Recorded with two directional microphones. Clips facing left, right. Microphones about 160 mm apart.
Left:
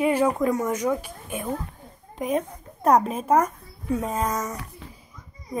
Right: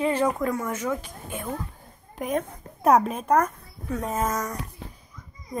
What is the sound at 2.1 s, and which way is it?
Speech, centre (ahead or behind).